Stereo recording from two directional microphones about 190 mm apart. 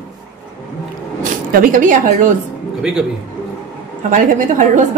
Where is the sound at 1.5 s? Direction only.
45° right (ahead or behind).